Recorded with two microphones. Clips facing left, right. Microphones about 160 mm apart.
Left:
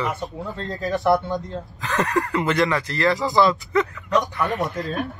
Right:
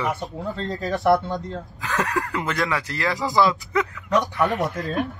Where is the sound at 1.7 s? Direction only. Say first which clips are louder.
Left 3 dB; 5° right (ahead or behind).